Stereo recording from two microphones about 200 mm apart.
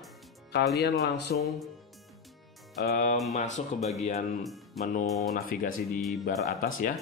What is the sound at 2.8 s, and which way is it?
Speech, 40° left (ahead or behind).